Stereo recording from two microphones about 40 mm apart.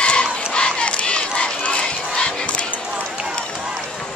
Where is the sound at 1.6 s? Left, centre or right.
Left.